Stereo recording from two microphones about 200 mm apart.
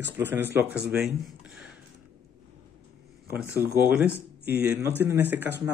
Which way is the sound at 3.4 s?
10° right (ahead or behind).